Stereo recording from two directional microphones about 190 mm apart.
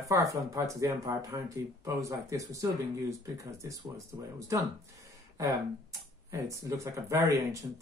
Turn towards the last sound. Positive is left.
turn(degrees=-15)  # may be behind; listen again after turning